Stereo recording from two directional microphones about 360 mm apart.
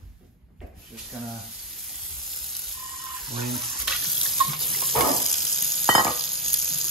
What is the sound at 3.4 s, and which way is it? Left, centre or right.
Water, centre.